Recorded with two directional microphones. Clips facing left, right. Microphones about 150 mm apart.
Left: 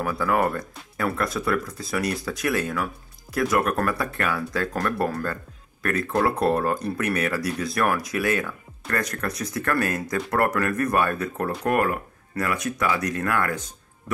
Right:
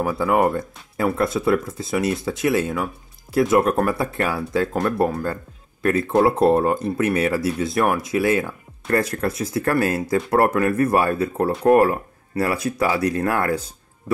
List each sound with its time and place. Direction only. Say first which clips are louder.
0.0 s speech: right 4 dB; 25° right (ahead or behind)